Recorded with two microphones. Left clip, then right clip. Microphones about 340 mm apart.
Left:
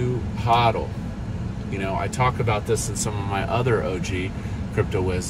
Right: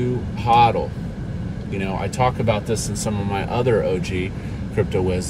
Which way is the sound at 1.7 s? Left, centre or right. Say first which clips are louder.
Right 2 dB; centre.